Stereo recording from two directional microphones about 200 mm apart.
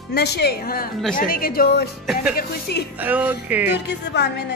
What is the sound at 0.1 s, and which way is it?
A woman's voice, 55° left (ahead or behind).